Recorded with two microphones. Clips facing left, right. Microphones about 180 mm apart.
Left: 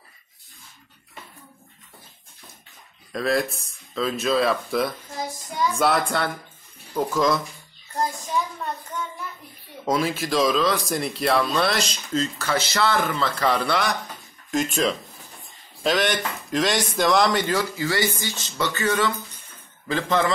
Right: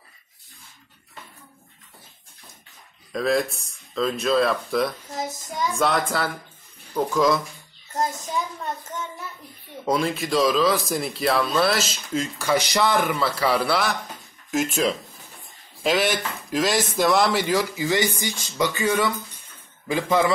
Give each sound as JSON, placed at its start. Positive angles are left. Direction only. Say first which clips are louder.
{"t": 3.1, "sound": "a man's voice", "louder": "right 1 dB", "side_deg": 0}
{"t": 5.1, "sound": "child singing", "louder": "right 1 dB", "side_deg": -20}
{"t": 5.8, "sound": "a man's voice", "louder": "even", "side_deg": 0}
{"t": 7.9, "sound": "child singing", "louder": "even", "side_deg": -20}
{"t": 9.8, "sound": "a man's voice", "louder": "even", "side_deg": 0}